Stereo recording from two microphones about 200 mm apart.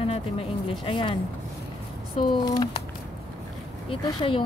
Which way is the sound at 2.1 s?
20° left (ahead or behind).